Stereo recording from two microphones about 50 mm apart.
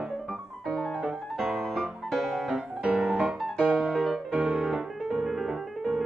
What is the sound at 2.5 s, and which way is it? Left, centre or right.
Music, centre.